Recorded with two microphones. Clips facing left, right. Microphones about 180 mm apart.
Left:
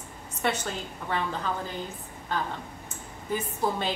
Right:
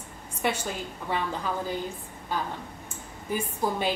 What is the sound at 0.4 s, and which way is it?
Speech, 10° right (ahead or behind).